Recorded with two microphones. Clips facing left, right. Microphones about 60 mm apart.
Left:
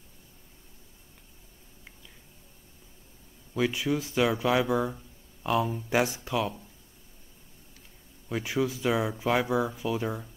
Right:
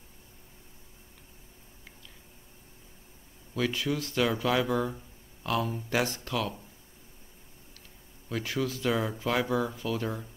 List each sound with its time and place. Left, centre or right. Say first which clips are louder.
3.5 s speech: left 2 dB; centre
8.3 s speech: left 3 dB; centre